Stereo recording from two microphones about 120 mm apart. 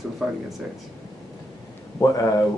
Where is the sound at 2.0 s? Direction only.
35° left (ahead or behind).